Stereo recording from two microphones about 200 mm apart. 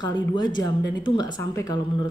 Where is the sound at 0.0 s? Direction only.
20° left (ahead or behind).